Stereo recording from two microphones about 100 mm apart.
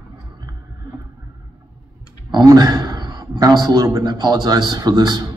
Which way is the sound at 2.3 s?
45° right (ahead or behind).